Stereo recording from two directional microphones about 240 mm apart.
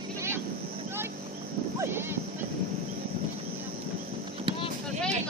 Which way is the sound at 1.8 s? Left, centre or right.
Centre.